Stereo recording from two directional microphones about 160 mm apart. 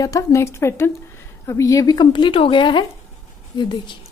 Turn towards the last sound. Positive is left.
turn(degrees=30)  # may be behind; listen again after turning